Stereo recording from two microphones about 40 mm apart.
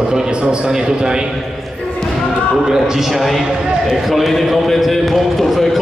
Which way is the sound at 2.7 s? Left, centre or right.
Centre.